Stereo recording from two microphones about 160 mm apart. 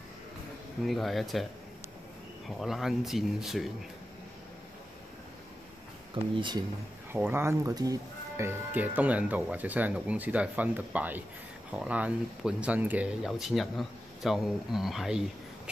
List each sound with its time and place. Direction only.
0.8 s speech: centre (ahead or behind)
2.5 s speech: centre (ahead or behind)
6.3 s speech: 30° right (ahead or behind)
7.1 s speech: 15° right (ahead or behind)